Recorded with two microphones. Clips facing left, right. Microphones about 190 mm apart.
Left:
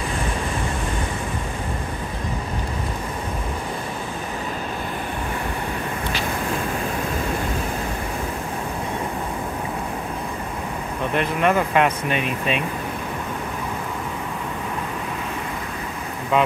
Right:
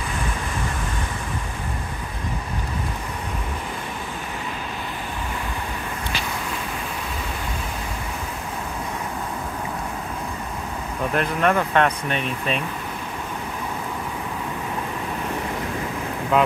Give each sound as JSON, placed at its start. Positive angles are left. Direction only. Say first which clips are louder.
{"t": 11.1, "sound": "speech", "louder": "left 1 dB", "side_deg": 0}
{"t": 16.3, "sound": "speech", "louder": "even", "side_deg": 0}